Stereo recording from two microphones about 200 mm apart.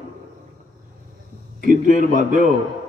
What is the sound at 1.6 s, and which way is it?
Speech, 40° right (ahead or behind).